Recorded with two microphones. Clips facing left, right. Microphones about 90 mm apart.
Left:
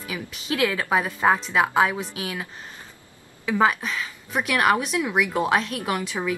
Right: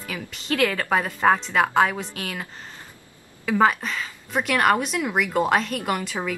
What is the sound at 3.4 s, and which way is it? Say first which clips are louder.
A woman's voice: right 1 dB; centre (ahead or behind).